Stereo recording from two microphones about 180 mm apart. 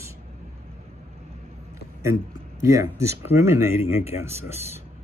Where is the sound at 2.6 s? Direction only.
15° right (ahead or behind).